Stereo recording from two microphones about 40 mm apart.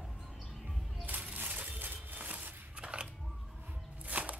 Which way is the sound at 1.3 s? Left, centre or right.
Right.